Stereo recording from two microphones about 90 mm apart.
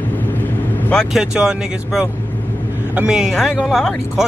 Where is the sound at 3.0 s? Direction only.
10° right (ahead or behind).